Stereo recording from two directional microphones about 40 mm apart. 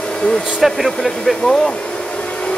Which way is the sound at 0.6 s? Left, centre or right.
Centre.